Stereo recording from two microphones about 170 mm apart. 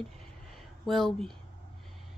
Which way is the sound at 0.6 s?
Centre (ahead or behind).